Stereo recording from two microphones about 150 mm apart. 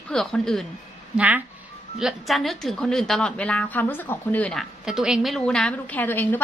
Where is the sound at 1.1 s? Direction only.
10° right (ahead or behind); by 4.6 s 10° left (ahead or behind).